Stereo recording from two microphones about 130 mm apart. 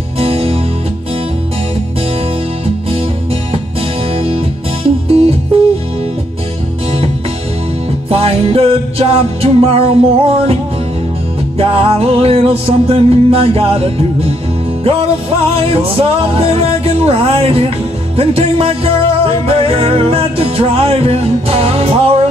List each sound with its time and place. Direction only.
0.2 s music: 50° right (ahead or behind)
5.0 s music: 50° right (ahead or behind)
8.1 s music: 50° right (ahead or behind)